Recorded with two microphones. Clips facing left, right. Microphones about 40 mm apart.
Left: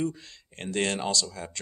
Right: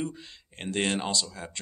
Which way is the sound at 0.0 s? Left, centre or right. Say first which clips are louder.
Left 4 dB; right.